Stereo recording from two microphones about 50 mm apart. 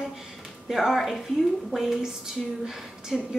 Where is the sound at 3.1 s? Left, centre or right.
Centre.